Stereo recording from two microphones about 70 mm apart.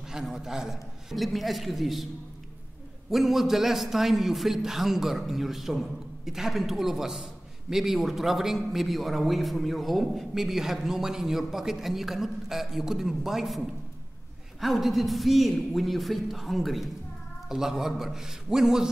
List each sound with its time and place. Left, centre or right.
0.1 s a man's voice: centre
3.1 s a man's voice: centre